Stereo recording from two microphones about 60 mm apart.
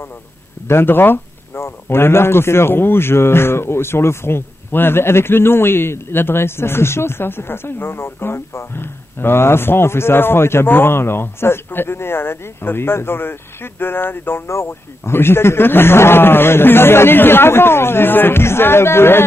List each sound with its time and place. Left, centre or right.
0.7 s speech: left